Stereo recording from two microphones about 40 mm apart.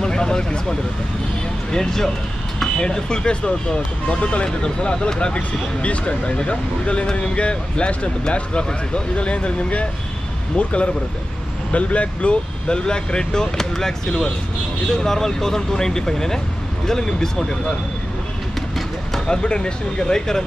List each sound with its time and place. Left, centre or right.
0.0 s speech: centre
19.1 s speech: centre